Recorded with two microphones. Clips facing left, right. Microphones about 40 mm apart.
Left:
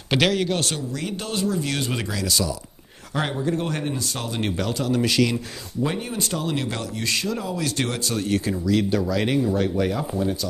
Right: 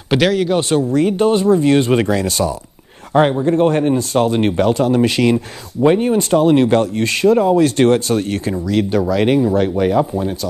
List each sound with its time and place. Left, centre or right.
0.1 s a man's voice: centre
0.7 s speech: right